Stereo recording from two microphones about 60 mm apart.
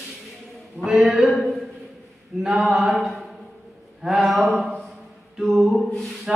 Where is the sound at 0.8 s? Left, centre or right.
Centre.